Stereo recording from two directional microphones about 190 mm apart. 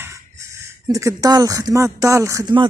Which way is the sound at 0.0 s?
15° right (ahead or behind).